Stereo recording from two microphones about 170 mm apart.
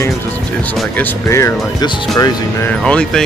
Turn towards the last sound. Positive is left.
turn(degrees=5)  # may be behind; listen again after turning